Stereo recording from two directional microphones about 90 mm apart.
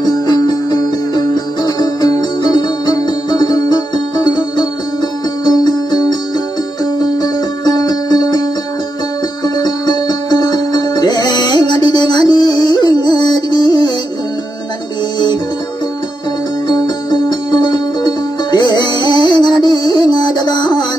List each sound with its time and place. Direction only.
0.0 s music: 45° left (ahead or behind)
5.5 s music: 50° left (ahead or behind)
16.6 s music: 50° left (ahead or behind)